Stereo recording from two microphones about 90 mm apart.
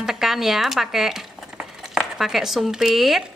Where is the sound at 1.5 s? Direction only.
5° right (ahead or behind).